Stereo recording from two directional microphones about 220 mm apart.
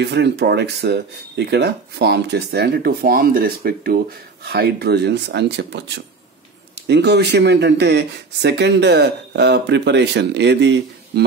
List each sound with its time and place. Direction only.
0.0 s speech: 50° right (ahead or behind)